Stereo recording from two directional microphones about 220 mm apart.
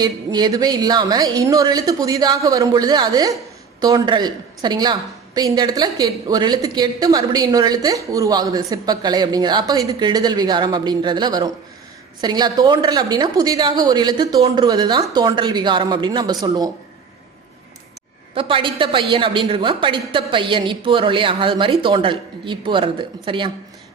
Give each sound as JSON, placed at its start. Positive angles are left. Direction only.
{"t": 0.0, "sound": "a woman's voice", "side_deg": -20}
{"t": 18.3, "sound": "a woman's voice", "side_deg": -25}